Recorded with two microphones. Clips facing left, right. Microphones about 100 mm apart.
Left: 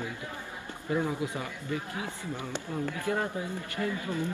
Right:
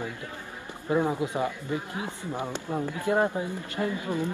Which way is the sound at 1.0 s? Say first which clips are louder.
Right 5 dB; 20° right (ahead or behind).